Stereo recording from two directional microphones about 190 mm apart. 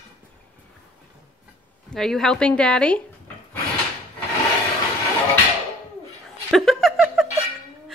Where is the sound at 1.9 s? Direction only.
Centre (ahead or behind).